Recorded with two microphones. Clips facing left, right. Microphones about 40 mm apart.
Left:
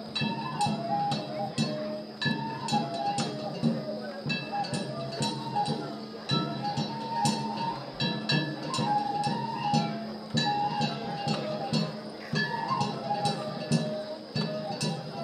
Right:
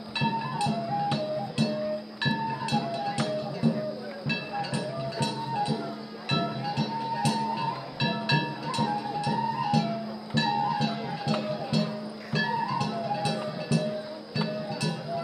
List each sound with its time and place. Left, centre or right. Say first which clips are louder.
0.2 s music: right 2 dB; centre